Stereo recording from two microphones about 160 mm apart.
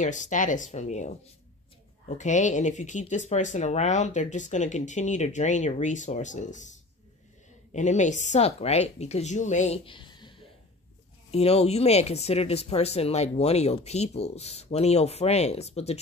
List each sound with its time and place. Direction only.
0.0 s speech: 50° left (ahead or behind)
9.8 s a sound: 30° left (ahead or behind)
11.3 s speech: 40° left (ahead or behind)